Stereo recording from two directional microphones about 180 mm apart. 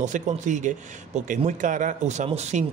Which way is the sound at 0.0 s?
45° right (ahead or behind).